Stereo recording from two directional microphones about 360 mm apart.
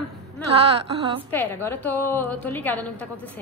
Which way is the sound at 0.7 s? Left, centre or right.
Centre.